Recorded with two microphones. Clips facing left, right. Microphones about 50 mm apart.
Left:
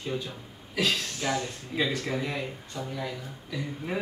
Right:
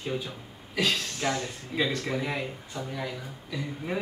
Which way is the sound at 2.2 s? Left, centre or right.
Centre.